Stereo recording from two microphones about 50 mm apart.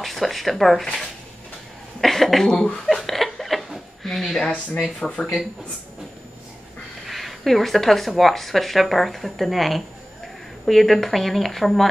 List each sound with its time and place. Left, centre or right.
0.0 s speech: centre
2.0 s a sound: centre
4.0 s speech: centre
7.1 s speech: centre